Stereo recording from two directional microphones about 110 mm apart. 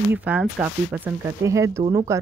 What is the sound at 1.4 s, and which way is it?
Speech, 25° right (ahead or behind).